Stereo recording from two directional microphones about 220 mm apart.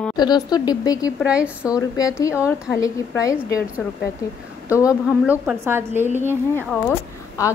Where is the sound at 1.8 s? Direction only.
15° left (ahead or behind).